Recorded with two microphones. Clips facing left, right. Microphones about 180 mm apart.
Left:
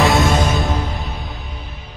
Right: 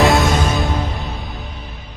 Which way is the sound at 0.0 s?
Centre (ahead or behind).